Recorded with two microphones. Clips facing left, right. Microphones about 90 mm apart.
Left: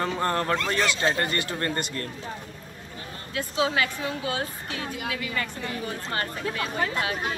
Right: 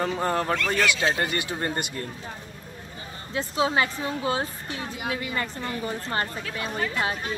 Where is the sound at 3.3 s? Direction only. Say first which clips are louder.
Right 2 dB; 30° right (ahead or behind).